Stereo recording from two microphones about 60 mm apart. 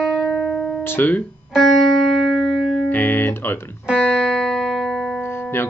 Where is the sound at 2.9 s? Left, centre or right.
Left.